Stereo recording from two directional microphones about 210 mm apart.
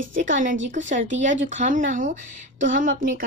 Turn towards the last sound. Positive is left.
turn(degrees=-40)  # may be behind; listen again after turning